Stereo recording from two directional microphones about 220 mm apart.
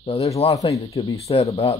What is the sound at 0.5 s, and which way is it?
Speech, 15° left (ahead or behind).